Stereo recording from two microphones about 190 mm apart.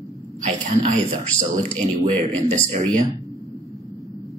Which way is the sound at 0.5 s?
40° right (ahead or behind).